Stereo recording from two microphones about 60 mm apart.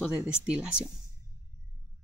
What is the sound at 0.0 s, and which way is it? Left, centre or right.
Speech, centre.